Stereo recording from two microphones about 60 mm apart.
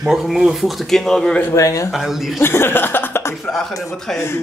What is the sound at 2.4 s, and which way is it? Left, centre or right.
Speech, left.